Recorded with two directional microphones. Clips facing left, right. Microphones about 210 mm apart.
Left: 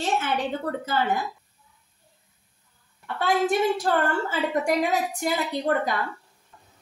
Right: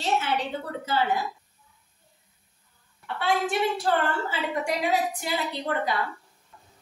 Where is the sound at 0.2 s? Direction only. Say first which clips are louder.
Left 2 dB; 50° left (ahead or behind).